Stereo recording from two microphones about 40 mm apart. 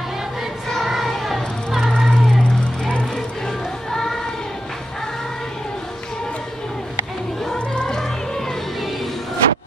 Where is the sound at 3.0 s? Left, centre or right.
Centre.